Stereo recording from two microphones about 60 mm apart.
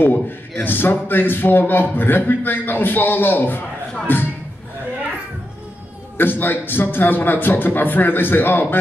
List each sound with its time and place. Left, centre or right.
0.0 s a man's voice: left
6.1 s a man's voice: left